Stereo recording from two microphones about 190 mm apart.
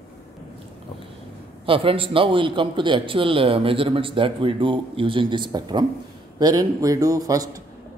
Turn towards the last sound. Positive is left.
turn(degrees=-20)  # may be behind; listen again after turning